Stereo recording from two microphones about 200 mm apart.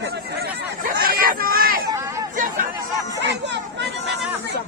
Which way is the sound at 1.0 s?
45° right (ahead or behind).